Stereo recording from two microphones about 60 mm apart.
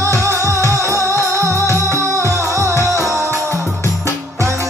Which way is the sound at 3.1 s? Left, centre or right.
Right.